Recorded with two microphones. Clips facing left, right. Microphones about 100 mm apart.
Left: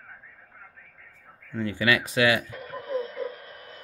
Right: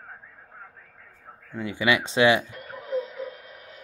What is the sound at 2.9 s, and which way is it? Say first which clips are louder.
Radio: right 1 dB; 10° right (ahead or behind).